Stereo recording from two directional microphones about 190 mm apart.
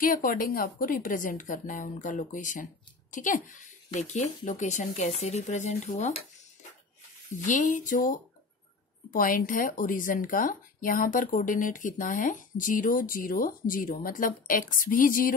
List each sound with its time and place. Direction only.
0.0 s speech: 50° left (ahead or behind)
7.3 s speech: 40° left (ahead or behind)